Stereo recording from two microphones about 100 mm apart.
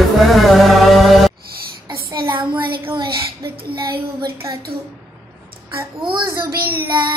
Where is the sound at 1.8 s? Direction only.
50° right (ahead or behind).